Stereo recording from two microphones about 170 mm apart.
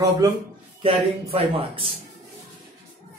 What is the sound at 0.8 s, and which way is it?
Speech, 30° right (ahead or behind).